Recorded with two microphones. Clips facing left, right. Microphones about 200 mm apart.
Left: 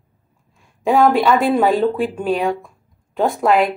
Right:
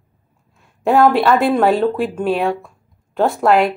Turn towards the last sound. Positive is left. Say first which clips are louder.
# right 1 dB
turn(degrees=0)  # may be behind; listen again after turning